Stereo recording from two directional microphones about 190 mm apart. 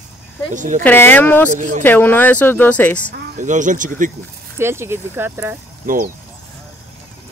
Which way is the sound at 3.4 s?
40° right (ahead or behind).